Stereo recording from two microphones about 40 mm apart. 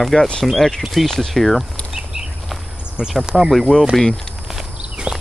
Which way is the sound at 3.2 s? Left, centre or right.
Centre.